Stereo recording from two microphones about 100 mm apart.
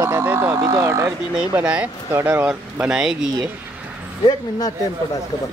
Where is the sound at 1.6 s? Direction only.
10° right (ahead or behind).